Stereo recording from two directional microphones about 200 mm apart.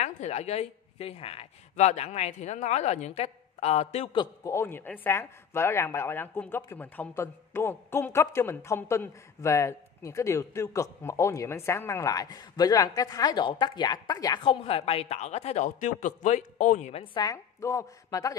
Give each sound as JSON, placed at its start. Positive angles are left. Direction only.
{"t": 0.0, "sound": "a woman's voice", "side_deg": 35}